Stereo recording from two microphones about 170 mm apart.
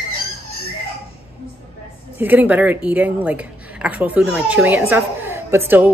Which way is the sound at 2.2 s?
10° right (ahead or behind).